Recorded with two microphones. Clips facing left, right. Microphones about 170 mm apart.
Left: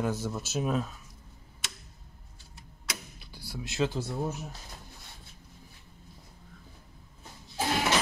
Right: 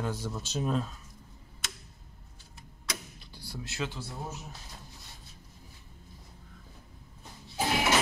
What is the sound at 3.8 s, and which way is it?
Speech, 40° left (ahead or behind).